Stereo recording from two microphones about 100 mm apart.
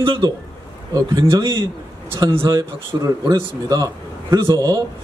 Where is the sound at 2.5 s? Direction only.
30° right (ahead or behind).